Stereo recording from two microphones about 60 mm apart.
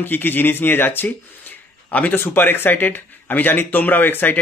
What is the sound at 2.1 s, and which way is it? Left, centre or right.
Speech, left.